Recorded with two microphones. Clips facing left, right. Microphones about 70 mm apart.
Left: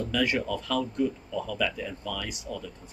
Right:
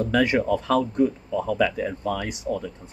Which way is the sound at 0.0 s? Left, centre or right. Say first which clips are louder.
Right 6 dB; right.